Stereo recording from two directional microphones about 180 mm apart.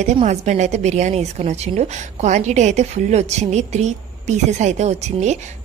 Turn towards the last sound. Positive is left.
turn(degrees=-40)  # may be behind; listen again after turning